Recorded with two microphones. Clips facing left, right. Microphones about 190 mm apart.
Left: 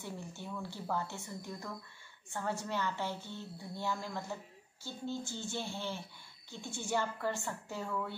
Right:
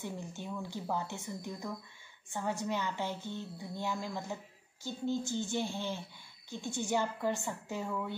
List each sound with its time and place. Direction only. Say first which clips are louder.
0.0 s a woman's voice: right 3 dB; 15° right (ahead or behind)